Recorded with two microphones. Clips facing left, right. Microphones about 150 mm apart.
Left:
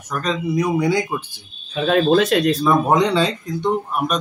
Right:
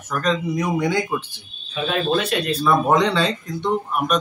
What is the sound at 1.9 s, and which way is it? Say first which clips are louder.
Speech: left 6 dB; 90° left.